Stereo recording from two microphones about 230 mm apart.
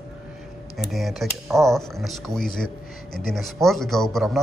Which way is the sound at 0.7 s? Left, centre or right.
Centre.